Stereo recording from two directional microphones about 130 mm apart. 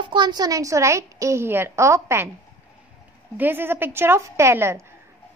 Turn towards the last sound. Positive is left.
turn(degrees=-20)  # may be behind; listen again after turning